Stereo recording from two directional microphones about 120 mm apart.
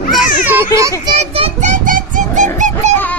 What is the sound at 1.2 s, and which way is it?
Speech, 50° right (ahead or behind).